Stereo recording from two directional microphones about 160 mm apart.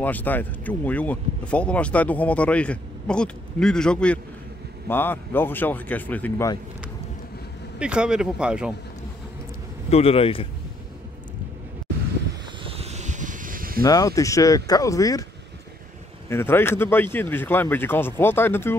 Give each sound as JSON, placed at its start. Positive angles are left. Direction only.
{"t": 0.0, "sound": "speech", "side_deg": 10}
{"t": 7.8, "sound": "speech", "side_deg": -5}
{"t": 9.8, "sound": "speech", "side_deg": 40}
{"t": 12.6, "sound": "vehicle", "side_deg": -40}
{"t": 13.8, "sound": "speech", "side_deg": 20}
{"t": 16.3, "sound": "speech", "side_deg": 15}